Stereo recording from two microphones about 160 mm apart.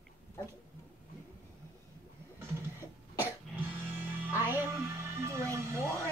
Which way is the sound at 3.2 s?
10° right (ahead or behind).